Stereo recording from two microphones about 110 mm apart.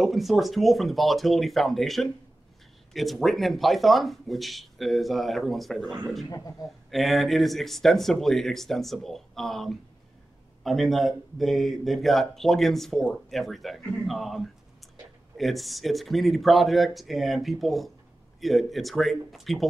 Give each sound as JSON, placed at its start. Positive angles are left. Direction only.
{"t": 0.0, "sound": "speech", "side_deg": 0}
{"t": 6.3, "sound": "a man's voice", "side_deg": 35}
{"t": 6.9, "sound": "speech", "side_deg": 0}